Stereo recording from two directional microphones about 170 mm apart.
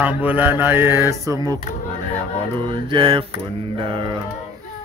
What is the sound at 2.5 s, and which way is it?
Singing, 30° right (ahead or behind).